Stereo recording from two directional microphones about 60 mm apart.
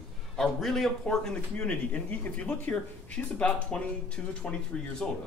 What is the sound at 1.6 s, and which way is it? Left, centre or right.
Speech, left.